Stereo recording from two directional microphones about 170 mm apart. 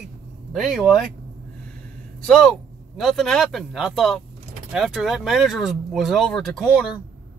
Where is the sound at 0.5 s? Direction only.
Centre (ahead or behind).